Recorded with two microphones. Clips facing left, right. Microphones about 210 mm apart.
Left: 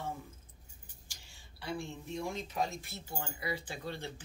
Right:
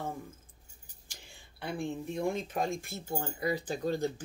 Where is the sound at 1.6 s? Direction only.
55° right (ahead or behind).